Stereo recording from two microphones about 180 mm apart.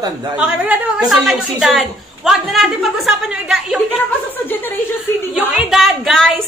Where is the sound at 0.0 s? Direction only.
25° right (ahead or behind).